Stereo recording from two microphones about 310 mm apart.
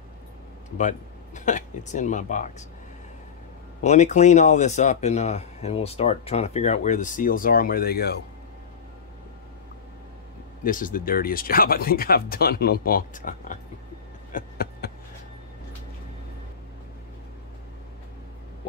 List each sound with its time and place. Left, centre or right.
0.7 s speech: left
3.8 s speech: left
10.6 s speech: left
14.3 s a sound: left